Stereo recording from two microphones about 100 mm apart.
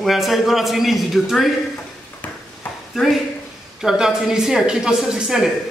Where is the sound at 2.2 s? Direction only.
15° left (ahead or behind).